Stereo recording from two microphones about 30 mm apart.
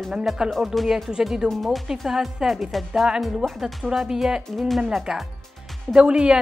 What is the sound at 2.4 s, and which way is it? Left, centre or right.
A woman's voice, centre.